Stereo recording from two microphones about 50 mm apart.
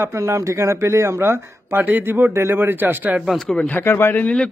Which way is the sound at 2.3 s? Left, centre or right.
Right.